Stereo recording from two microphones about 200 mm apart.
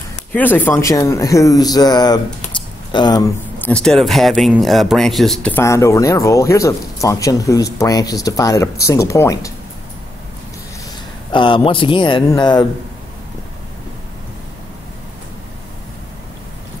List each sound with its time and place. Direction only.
0.3 s speech: 10° left (ahead or behind)
3.5 s speech: 5° left (ahead or behind)
11.3 s speech: 25° left (ahead or behind)